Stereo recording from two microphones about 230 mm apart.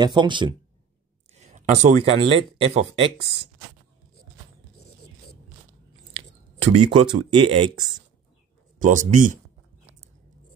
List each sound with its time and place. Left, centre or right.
0.0 s speech: centre
1.3 s a sound: right
2.1 s speech: right
6.1 s speech: right
8.7 s speech: right